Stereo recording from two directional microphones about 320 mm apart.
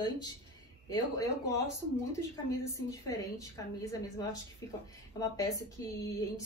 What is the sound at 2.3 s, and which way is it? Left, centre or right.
A woman's voice, centre.